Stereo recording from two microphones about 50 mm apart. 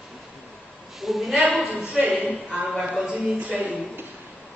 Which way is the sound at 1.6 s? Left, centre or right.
Centre.